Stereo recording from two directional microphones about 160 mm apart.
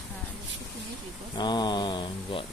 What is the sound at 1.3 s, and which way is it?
Mantra, 30° left (ahead or behind).